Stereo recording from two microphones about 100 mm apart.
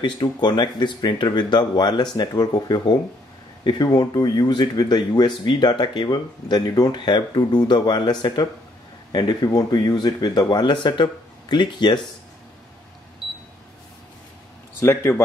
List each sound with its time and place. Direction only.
0.0 s speech: 50° left (ahead or behind)
14.8 s speech: 25° left (ahead or behind)